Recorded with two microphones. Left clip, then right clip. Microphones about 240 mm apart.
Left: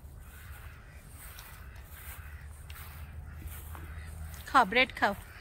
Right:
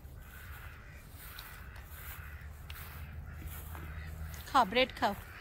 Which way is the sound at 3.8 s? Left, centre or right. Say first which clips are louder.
Right 1 dB; left.